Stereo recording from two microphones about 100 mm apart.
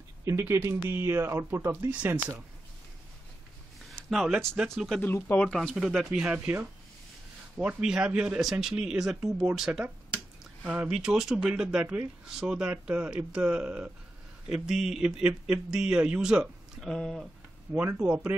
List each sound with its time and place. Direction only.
0.2 s speech: 30° right (ahead or behind)
4.1 s speech: centre (ahead or behind)
5.0 s speech: 20° left (ahead or behind)
5.5 s speech: centre (ahead or behind)
6.4 s speech: 15° right (ahead or behind); by 17.3 s 5° left (ahead or behind)
17.9 s speech: 15° right (ahead or behind)